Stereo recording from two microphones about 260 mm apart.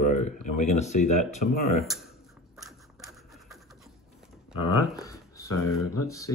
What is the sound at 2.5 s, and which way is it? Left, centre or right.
Scratch, centre.